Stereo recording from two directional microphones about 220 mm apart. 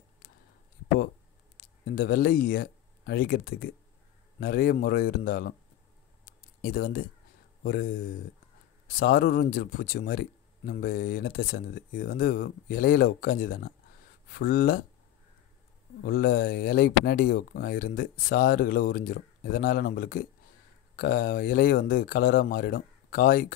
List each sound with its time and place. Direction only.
1.9 s speech: 40° left (ahead or behind)
6.6 s speech: 40° left (ahead or behind)
16.0 s speech: 40° left (ahead or behind)